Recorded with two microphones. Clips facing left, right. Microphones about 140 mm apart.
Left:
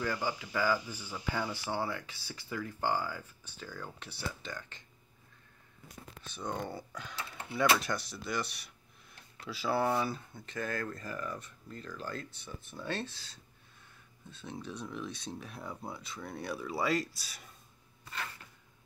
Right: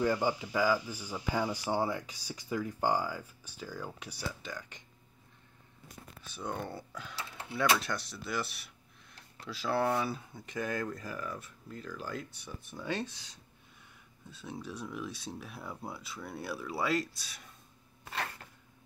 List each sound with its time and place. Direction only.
0.0 s speech: 20° right (ahead or behind)
6.3 s speech: 5° right (ahead or behind)